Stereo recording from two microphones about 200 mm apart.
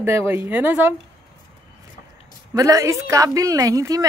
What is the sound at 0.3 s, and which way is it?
Speech, 10° right (ahead or behind).